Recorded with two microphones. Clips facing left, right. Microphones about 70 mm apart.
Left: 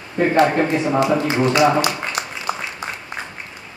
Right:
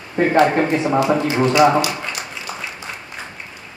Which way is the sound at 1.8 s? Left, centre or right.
Left.